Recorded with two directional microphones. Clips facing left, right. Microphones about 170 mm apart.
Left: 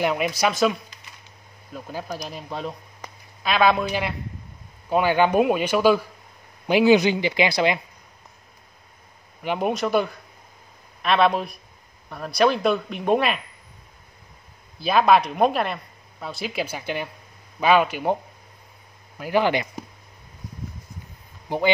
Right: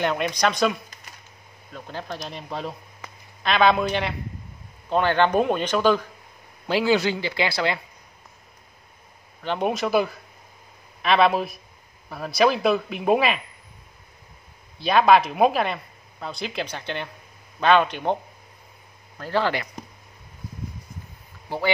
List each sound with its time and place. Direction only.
0.0 s speech: 5° left (ahead or behind)
9.4 s speech: 10° left (ahead or behind)
9.7 s speech: centre (ahead or behind)
14.8 s speech: centre (ahead or behind)
19.1 s speech: 15° left (ahead or behind)
21.5 s speech: 20° left (ahead or behind)